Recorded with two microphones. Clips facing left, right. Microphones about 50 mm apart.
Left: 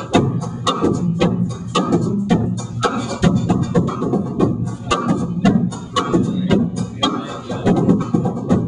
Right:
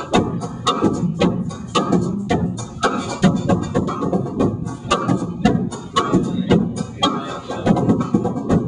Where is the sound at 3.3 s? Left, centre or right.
Centre.